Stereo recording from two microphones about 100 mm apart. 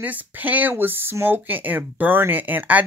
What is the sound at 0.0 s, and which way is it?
Speech, 15° right (ahead or behind).